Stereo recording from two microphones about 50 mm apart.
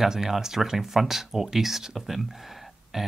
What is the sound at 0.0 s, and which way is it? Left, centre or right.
Speech, centre.